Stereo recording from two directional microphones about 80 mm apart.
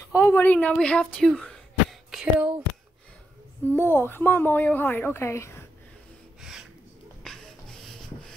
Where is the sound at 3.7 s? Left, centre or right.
Left.